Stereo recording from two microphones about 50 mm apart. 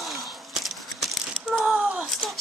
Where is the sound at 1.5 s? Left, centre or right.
Right.